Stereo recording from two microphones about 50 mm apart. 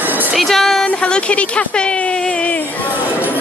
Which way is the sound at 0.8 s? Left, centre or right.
Left.